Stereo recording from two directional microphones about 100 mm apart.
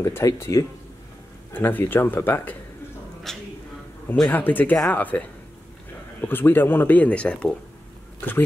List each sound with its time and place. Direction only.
0.0 s speech: 30° left (ahead or behind)
1.5 s speech: 20° left (ahead or behind)
3.3 s a sound: 5° left (ahead or behind)
4.3 s speech: 20° left (ahead or behind)
6.2 s speech: 20° left (ahead or behind)